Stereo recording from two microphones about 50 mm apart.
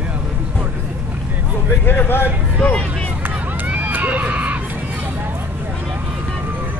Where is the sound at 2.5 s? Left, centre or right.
Left.